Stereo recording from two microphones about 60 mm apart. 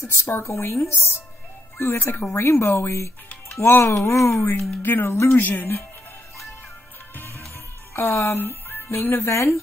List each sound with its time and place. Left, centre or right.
0.0 s speech: left
3.9 s speech: left
5.1 s speech: left
5.4 s speech: left
7.2 s music: left
7.9 s speech: left
9.2 s speech: left